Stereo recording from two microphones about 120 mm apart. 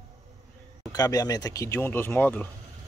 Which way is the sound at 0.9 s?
30° left (ahead or behind).